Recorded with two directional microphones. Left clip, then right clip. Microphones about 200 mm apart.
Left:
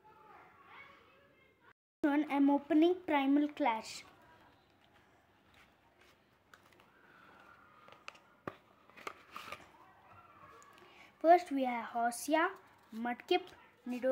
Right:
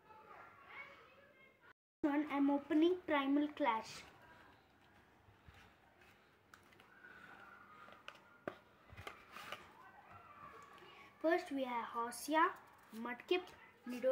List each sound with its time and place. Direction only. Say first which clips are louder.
2.0 s speech: left 5 dB; 60° left (ahead or behind)
8.0 s a sound: left 2 dB; 35° left (ahead or behind)
11.2 s speech: left 10 dB; 60° left (ahead or behind)